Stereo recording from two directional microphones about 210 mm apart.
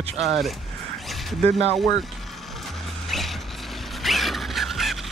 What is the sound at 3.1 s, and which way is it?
Vehicle, centre (ahead or behind).